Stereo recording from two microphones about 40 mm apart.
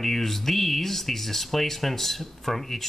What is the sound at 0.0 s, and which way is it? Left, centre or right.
Speech, centre.